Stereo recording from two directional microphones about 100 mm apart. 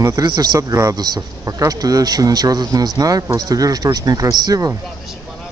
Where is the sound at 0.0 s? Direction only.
35° right (ahead or behind).